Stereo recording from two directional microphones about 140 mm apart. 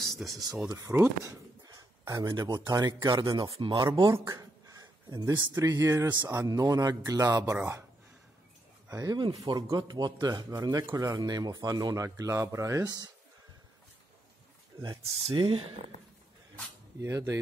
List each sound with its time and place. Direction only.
0.0 s speech: centre (ahead or behind)
0.7 s speech: 25° right (ahead or behind)
3.3 s speech: 40° right (ahead or behind)
7.3 s speech: 20° right (ahead or behind)
8.8 s speech: 25° right (ahead or behind)
14.7 s speech: 20° right (ahead or behind)
15.2 s speech: 35° right (ahead or behind)
17.0 s speech: 20° right (ahead or behind)